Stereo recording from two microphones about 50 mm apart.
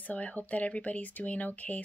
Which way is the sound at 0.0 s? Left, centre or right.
Left.